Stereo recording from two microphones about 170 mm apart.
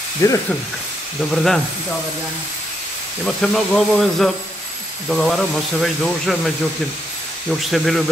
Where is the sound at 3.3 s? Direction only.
Centre (ahead or behind).